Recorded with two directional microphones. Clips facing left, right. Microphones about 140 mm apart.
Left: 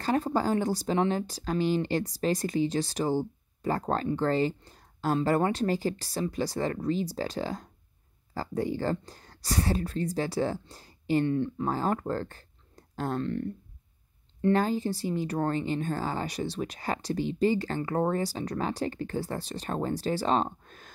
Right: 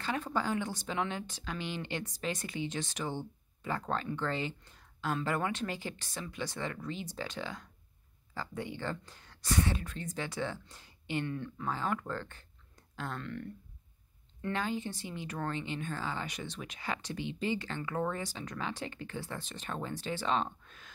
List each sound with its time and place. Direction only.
0.0 s speech: 40° left (ahead or behind)
14.5 s speech: 40° left (ahead or behind)